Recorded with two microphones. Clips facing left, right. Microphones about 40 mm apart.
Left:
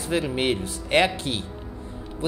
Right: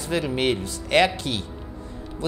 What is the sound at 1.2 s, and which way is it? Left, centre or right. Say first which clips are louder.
Speech: even; left.